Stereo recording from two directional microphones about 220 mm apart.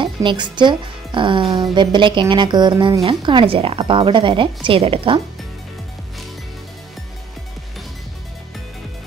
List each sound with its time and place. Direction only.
0.0 s speech: 20° right (ahead or behind)